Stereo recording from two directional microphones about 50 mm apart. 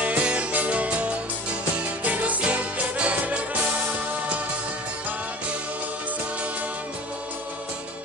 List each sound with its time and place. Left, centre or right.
0.0 s music: right